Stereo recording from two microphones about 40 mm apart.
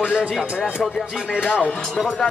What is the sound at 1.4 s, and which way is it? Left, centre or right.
Speech, left.